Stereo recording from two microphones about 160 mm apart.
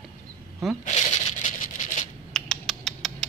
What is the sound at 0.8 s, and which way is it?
Rub, 45° left (ahead or behind).